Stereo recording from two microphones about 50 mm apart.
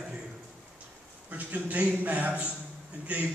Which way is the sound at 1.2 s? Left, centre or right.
Right.